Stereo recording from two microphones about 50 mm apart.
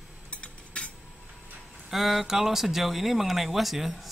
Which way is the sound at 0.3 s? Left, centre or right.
Left.